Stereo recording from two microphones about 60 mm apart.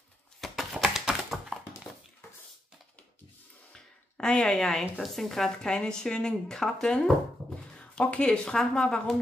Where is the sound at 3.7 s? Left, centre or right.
Centre.